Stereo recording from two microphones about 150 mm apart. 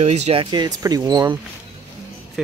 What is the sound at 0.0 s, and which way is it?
Speech, 45° right (ahead or behind).